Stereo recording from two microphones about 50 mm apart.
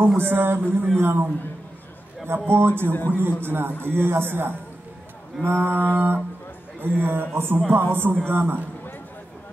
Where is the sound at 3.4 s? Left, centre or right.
Right.